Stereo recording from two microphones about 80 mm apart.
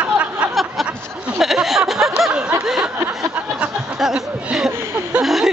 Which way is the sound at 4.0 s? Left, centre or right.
Centre.